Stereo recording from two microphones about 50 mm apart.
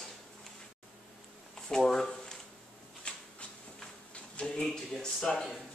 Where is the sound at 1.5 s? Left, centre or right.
Centre.